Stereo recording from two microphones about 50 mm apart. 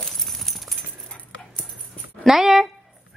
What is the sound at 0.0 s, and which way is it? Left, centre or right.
Clip-clop, centre.